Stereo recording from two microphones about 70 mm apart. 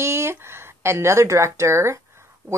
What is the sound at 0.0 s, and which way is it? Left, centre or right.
Speech, right.